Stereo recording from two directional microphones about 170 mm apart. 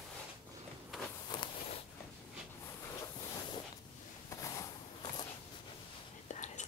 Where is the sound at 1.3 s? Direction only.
30° left (ahead or behind).